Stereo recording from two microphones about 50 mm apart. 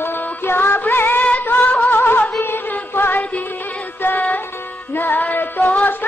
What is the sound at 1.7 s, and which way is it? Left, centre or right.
Music, left.